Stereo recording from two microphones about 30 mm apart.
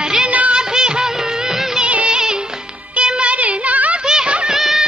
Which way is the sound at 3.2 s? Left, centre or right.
Right.